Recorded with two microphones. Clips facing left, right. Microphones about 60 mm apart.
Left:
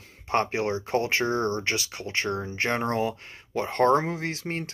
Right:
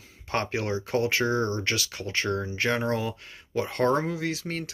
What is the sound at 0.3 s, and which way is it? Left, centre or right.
Speech, left.